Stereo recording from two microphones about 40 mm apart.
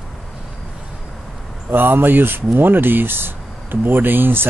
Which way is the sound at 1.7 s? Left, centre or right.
Right.